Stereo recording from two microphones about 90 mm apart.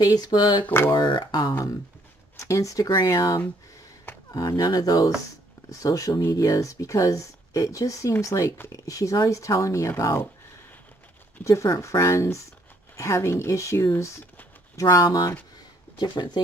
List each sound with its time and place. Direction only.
0.0 s speech: 45° left (ahead or behind)
0.7 s speech: 25° left (ahead or behind)
0.9 s speech: 65° left (ahead or behind)
1.2 s speech: 50° left (ahead or behind)
2.3 s speech: 35° left (ahead or behind)
11.4 s speech: 35° left (ahead or behind); by 16.4 s 55° left (ahead or behind)